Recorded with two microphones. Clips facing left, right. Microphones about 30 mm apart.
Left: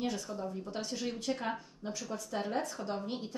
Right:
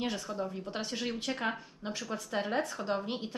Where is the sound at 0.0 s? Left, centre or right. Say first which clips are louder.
Right 2 dB; right.